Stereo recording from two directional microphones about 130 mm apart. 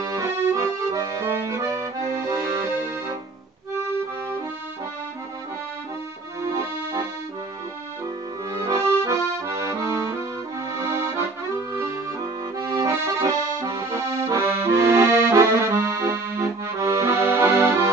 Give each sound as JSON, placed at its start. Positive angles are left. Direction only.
{"t": 0.0, "sound": "accordion", "side_deg": -25}
{"t": 6.4, "sound": "accordion", "side_deg": -25}
{"t": 8.5, "sound": "accordion", "side_deg": -25}